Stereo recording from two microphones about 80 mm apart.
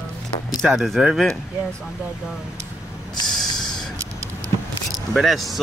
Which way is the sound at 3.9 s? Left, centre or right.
Right.